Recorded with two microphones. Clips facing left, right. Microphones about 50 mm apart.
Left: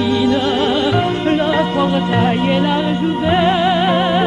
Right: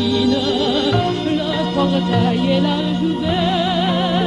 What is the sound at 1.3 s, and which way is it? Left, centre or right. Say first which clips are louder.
Music: left 4 dB; left.